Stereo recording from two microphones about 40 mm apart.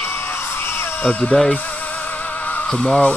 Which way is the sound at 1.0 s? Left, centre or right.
Left.